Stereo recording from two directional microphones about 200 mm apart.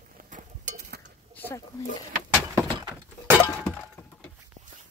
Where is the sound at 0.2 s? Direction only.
40° right (ahead or behind).